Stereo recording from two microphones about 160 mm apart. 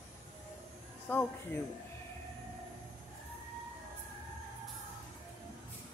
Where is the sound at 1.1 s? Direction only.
10° left (ahead or behind).